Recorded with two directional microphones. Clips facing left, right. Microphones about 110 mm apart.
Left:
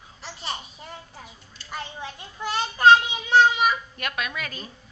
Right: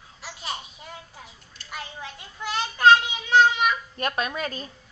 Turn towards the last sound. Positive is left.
turn(degrees=-35)  # may be behind; listen again after turning